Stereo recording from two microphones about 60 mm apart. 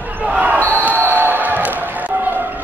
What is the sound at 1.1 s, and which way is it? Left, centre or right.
Basketball bounce, right.